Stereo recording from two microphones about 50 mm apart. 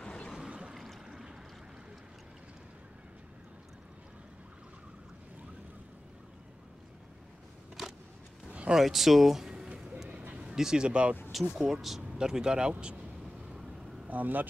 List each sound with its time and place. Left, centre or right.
0.0 s a sound: centre
0.5 s pour: centre
1.0 s boat: centre
8.5 s a sound: right
8.7 s speech: centre
9.8 s vehicle: centre
10.4 s speech: centre
11.3 s speech: centre
14.0 s speech: right